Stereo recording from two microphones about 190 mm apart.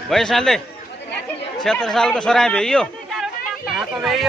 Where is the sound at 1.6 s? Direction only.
5° left (ahead or behind).